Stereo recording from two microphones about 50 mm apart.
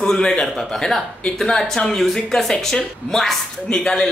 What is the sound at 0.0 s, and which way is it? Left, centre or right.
A woman's voice, centre.